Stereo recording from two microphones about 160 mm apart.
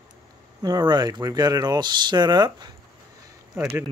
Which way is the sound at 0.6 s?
25° right (ahead or behind).